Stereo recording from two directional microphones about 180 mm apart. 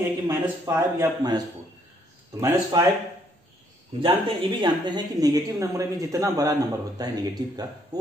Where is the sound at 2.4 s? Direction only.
20° right (ahead or behind).